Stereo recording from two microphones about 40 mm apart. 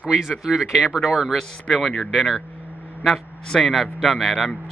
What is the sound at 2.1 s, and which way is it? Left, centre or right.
Speech, centre.